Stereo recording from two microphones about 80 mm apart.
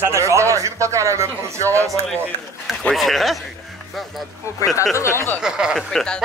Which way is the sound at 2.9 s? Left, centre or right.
Centre.